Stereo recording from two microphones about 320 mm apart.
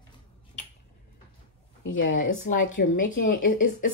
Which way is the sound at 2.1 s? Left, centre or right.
Left.